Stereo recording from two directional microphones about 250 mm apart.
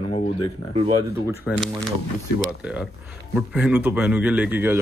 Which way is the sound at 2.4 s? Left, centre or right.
Centre.